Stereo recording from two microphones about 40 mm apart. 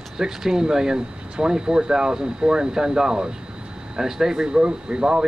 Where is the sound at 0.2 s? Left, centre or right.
Centre.